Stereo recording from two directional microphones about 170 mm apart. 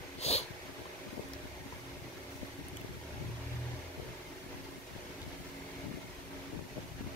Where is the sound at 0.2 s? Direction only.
40° left (ahead or behind).